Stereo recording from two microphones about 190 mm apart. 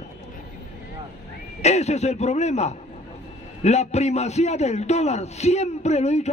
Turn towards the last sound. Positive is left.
turn(degrees=35)  # may be behind; listen again after turning